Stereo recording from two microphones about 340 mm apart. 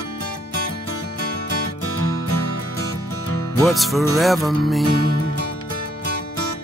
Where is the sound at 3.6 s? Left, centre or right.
Centre.